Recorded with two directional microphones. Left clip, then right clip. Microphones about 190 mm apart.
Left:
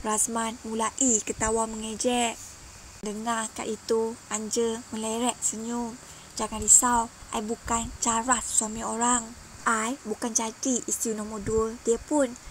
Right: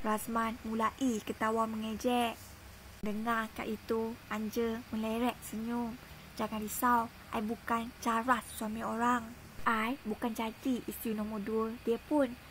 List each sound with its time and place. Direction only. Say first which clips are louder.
0.0 s a woman's voice: left 5 dB; 35° left (ahead or behind)